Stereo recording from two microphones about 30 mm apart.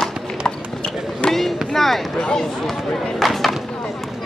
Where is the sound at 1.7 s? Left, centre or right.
Centre.